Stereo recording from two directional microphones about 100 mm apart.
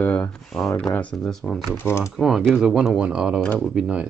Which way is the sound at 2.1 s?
Centre (ahead or behind).